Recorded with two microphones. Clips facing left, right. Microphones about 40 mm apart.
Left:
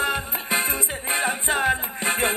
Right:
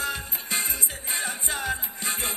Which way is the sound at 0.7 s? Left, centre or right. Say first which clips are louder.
Left 6 dB; left.